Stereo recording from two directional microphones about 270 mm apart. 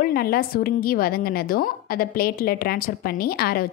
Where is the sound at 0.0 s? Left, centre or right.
Left.